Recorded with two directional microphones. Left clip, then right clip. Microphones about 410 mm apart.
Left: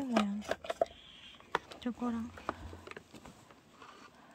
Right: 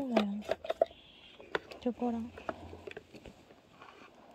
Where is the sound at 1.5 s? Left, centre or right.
Centre.